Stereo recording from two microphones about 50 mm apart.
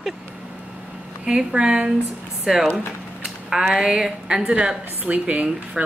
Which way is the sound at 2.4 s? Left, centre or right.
Centre.